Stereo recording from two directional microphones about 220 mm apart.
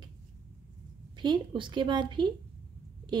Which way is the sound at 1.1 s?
20° right (ahead or behind).